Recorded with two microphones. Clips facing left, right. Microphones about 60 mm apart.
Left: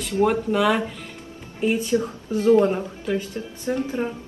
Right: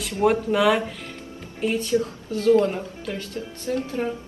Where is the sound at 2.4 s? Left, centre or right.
Left.